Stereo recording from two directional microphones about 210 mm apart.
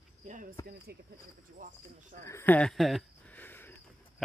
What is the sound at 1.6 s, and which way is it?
Speech, 35° right (ahead or behind).